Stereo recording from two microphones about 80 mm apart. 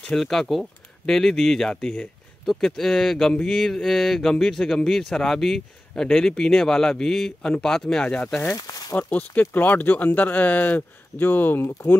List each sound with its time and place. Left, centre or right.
0.0 s speech: centre
2.6 s speech: centre
8.5 s speech: left
8.9 s speech: left